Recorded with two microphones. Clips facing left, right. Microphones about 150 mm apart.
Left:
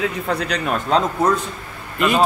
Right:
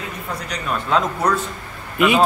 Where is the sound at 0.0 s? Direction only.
70° left (ahead or behind).